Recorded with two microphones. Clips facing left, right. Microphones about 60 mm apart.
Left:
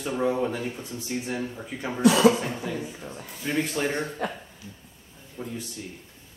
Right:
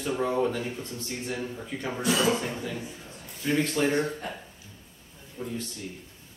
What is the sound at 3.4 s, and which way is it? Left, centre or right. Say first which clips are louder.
Speech: right 2 dB; centre.